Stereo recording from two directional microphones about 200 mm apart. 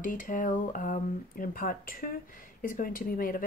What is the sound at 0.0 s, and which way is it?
Speech, 40° left (ahead or behind).